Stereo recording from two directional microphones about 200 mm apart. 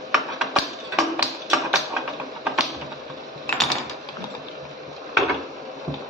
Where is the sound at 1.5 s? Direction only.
Centre (ahead or behind).